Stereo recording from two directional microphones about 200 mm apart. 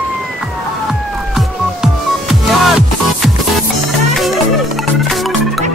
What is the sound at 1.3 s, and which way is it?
Music, centre (ahead or behind).